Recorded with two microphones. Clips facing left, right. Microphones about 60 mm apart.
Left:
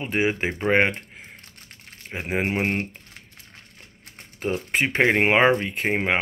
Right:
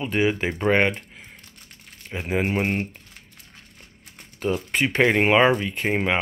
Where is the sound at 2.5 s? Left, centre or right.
Left.